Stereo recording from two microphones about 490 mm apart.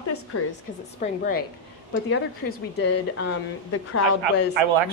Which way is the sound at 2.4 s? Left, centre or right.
Centre.